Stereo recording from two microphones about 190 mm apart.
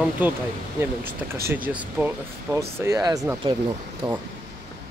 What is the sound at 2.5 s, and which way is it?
A man's voice, 15° right (ahead or behind).